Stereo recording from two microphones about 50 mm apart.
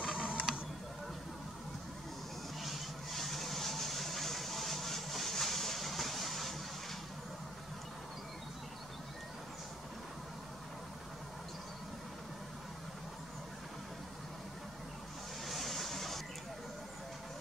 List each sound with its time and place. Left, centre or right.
0.0 s a sound: centre
2.6 s vehicle: centre
15.4 s vehicle: centre